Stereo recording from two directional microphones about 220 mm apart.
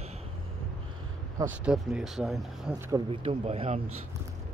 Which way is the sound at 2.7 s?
20° right (ahead or behind).